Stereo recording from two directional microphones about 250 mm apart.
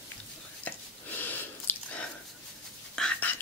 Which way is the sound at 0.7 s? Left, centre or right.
Centre.